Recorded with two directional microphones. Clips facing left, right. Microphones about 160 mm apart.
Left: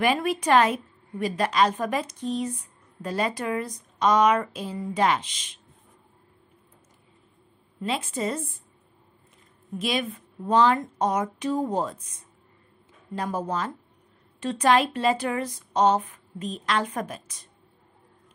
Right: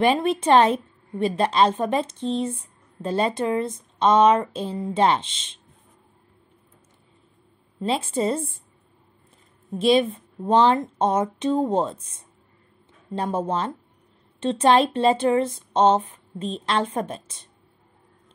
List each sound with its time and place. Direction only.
0.0 s a woman's voice: 25° right (ahead or behind)
7.8 s a woman's voice: 30° right (ahead or behind)
9.7 s a woman's voice: 30° right (ahead or behind)